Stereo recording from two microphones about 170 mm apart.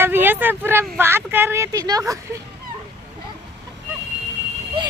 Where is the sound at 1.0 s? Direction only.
15° right (ahead or behind).